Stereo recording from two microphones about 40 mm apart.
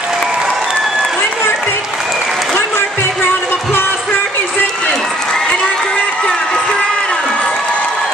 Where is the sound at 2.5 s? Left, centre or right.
Left.